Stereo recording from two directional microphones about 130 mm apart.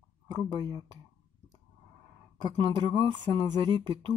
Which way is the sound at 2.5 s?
35° right (ahead or behind).